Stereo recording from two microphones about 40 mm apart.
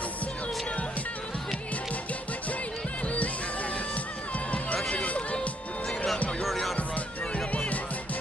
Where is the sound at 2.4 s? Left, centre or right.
Left.